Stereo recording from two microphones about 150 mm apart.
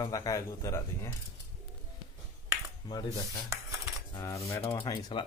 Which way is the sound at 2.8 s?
25° left (ahead or behind).